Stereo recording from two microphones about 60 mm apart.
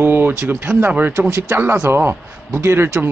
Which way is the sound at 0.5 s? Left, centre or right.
Right.